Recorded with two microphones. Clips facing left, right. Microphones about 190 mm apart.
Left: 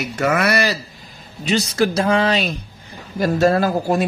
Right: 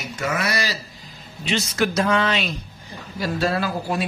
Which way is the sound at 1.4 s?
35° left (ahead or behind).